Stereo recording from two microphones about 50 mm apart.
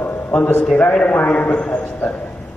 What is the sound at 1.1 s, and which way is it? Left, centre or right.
Speech, left.